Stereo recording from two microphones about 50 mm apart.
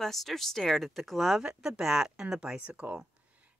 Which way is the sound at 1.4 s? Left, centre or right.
Centre.